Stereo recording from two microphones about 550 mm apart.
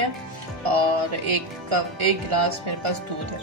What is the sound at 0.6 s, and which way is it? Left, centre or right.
A woman's voice, right.